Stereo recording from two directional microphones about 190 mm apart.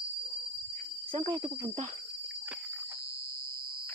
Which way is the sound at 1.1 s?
25° right (ahead or behind).